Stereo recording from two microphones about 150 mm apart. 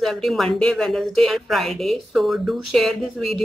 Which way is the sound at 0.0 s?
Centre (ahead or behind).